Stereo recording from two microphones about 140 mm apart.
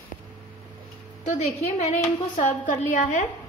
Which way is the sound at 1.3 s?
55° left (ahead or behind).